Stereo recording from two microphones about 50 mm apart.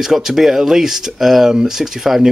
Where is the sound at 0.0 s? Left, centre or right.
Centre.